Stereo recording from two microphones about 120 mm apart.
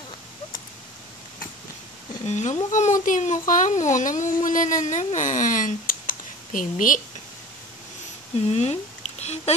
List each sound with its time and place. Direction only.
2.2 s speech: 75° left (ahead or behind); by 7.0 s 90° left
8.5 s speech: 65° left (ahead or behind)